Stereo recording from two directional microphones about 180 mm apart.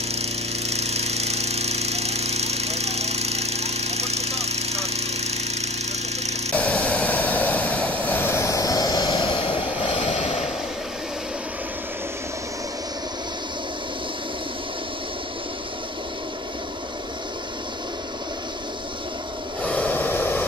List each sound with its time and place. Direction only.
0.1 s a sound: 35° right (ahead or behind)
6.5 s vehicle: 10° left (ahead or behind); by 9.9 s 25° left (ahead or behind)
9.9 s vehicle: 40° left (ahead or behind)
19.6 s snort: 10° left (ahead or behind)